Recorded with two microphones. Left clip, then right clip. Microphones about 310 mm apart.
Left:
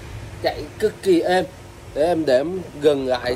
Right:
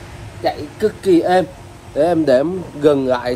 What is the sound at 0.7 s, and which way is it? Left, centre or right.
Speech, centre.